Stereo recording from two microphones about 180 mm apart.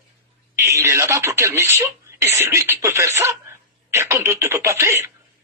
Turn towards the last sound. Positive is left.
turn(degrees=-15)  # may be behind; listen again after turning